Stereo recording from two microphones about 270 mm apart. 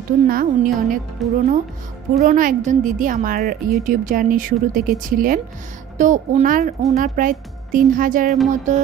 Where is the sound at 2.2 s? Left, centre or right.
Right.